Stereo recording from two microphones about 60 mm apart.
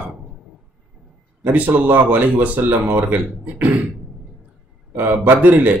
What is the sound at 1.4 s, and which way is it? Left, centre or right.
Speech, right.